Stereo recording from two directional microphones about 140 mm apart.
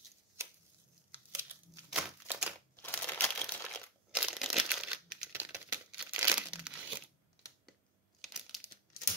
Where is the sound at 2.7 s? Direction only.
15° left (ahead or behind).